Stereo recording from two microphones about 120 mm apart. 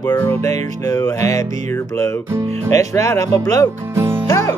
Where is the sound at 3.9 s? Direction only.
20° right (ahead or behind).